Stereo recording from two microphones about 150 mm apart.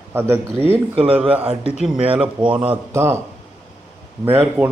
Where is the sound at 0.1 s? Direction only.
15° right (ahead or behind).